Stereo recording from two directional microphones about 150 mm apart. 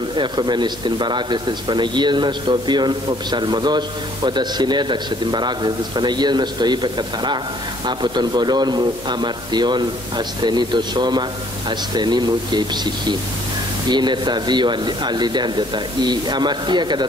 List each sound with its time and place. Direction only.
0.1 s speech: 30° right (ahead or behind)
13.8 s speech: 30° right (ahead or behind)